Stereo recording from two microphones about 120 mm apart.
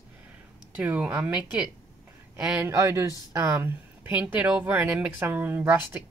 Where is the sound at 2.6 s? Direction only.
20° right (ahead or behind).